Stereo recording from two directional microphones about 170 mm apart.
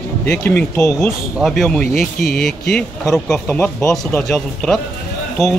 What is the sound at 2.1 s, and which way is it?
Speech, 65° left (ahead or behind).